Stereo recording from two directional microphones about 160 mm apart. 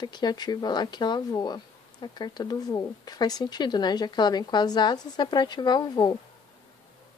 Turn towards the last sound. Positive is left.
turn(degrees=25)  # may be behind; listen again after turning